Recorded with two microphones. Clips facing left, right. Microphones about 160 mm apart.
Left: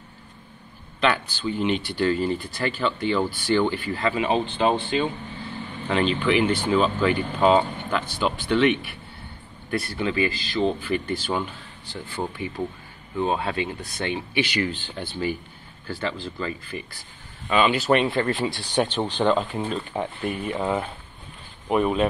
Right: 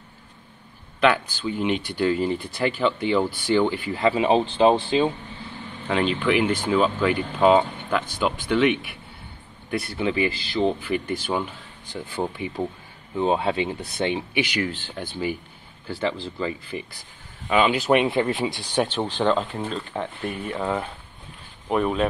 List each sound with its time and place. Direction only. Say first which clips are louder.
1.0 s speech: right 3 dB; 10° right (ahead or behind)
4.2 s speech: right 5 dB; 25° right (ahead or behind)
5.9 s speech: even; 5° right (ahead or behind)
18.3 s speech: even; 5° right (ahead or behind)